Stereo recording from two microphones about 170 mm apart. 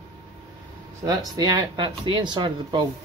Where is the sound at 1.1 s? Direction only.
20° right (ahead or behind).